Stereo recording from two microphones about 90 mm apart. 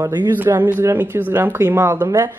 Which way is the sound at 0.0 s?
25° right (ahead or behind).